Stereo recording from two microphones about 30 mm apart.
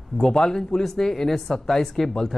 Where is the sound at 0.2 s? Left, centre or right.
Left.